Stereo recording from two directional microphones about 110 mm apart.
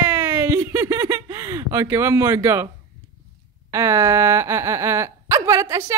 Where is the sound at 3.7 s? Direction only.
25° right (ahead or behind).